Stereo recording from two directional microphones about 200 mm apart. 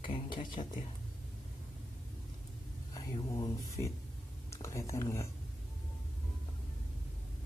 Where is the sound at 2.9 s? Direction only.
15° left (ahead or behind).